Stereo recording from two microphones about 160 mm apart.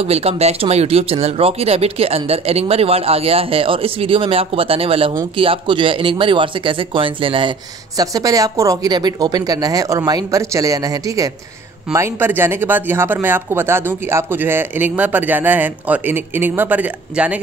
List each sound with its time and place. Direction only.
0.0 s speech: 40° right (ahead or behind)
8.0 s speech: 20° right (ahead or behind)